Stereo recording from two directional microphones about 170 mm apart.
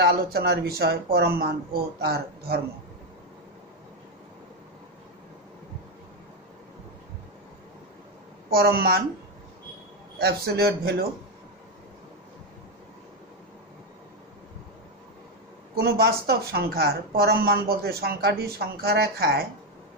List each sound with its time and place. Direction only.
0.0 s speech: 70° right (ahead or behind)
8.5 s a man's voice: 65° right (ahead or behind)
10.1 s a man's voice: 70° right (ahead or behind)
15.7 s speech: 65° right (ahead or behind)